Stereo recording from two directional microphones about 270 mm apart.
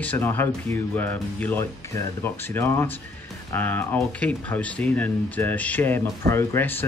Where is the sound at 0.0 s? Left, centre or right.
Centre.